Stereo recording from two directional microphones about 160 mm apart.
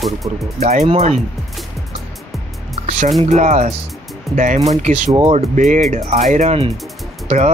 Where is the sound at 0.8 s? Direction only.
40° right (ahead or behind).